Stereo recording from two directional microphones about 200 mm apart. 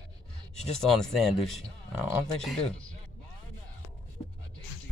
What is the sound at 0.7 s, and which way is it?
Speech, centre (ahead or behind).